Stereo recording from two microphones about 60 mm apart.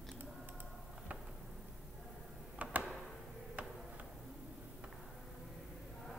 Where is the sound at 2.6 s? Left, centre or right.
Right.